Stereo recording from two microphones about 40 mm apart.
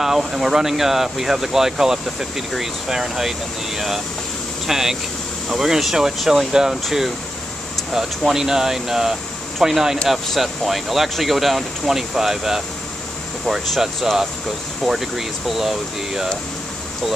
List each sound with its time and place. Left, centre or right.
0.0 s speech: centre
14.9 s speech: centre